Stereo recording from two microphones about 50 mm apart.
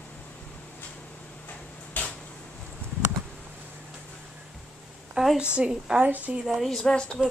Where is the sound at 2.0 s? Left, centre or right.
Left.